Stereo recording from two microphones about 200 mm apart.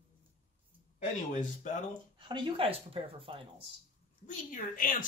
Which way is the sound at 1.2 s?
40° left (ahead or behind).